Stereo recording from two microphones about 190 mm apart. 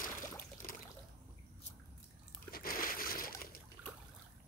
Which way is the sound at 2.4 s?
50° left (ahead or behind).